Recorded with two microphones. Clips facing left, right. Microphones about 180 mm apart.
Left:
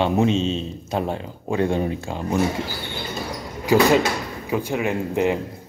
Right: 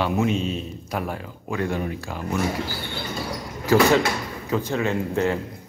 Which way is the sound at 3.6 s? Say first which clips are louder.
Left 1 dB; 15° left (ahead or behind).